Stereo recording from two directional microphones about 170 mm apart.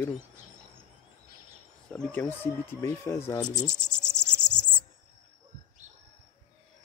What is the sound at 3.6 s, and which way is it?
Insect, 15° right (ahead or behind).